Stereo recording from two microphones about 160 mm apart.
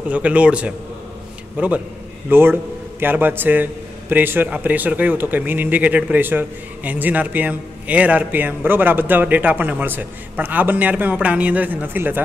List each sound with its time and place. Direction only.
0.1 s a man's voice: 10° right (ahead or behind)